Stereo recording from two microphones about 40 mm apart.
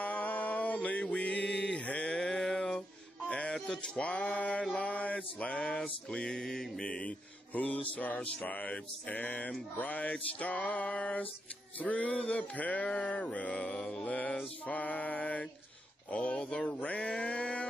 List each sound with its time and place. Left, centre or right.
0.0 s a sound: left
1.1 s music: left
2.1 s a sound: centre
3.3 s a sound: left
3.5 s speech: centre
4.0 s mantra: left
5.8 s mantra: centre
6.8 s music: left
8.5 s mantra: left
13.7 s mantra: centre
14.0 s mantra: left
16.3 s male singing: centre
16.6 s male singing: left